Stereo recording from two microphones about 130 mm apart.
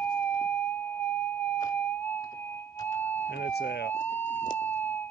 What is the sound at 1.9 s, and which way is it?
Music, 15° left (ahead or behind).